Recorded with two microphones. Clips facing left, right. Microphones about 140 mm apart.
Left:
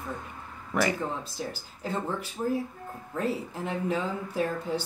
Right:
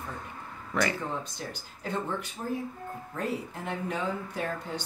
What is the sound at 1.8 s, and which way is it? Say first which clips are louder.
Speech: left 1 dB; 5° left (ahead or behind).